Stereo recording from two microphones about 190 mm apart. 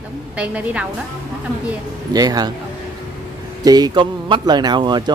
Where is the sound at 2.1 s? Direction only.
20° right (ahead or behind).